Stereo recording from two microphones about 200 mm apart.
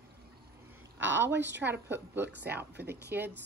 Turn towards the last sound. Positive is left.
turn(degrees=-55)  # may be behind; listen again after turning